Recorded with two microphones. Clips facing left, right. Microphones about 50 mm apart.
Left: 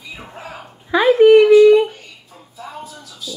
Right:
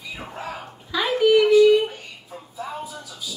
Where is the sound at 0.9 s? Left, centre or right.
Left.